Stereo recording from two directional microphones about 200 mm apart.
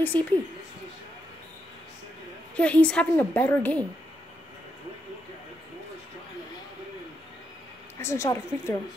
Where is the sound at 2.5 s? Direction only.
5° left (ahead or behind).